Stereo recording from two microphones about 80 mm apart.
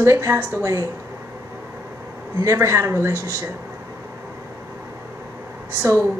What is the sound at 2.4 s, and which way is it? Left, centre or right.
A woman's voice, right.